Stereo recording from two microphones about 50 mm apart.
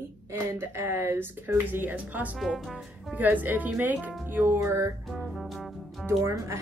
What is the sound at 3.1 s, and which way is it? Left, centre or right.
Speech, right.